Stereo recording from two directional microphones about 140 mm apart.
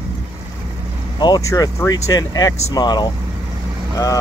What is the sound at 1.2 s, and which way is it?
Speech, 30° left (ahead or behind).